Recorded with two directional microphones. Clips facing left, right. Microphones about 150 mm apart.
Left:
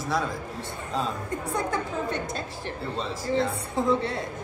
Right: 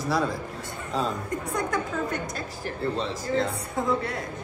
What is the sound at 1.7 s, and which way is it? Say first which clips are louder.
A woman's voice: even; 25° left (ahead or behind).